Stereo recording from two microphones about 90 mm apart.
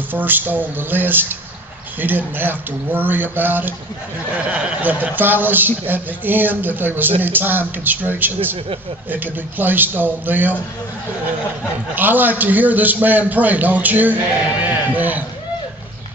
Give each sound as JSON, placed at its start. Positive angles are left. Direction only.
{"t": 0.1, "sound": "a man's voice", "side_deg": -20}
{"t": 4.5, "sound": "a man's voice", "side_deg": -10}
{"t": 11.9, "sound": "a man's voice", "side_deg": -20}